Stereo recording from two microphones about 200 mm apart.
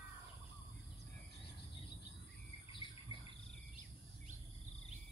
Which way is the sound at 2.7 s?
25° left (ahead or behind).